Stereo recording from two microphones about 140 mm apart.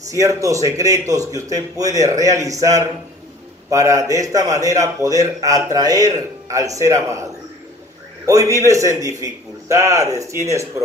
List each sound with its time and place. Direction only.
0.1 s a man's voice: 20° right (ahead or behind)
8.3 s a man's voice: 25° right (ahead or behind)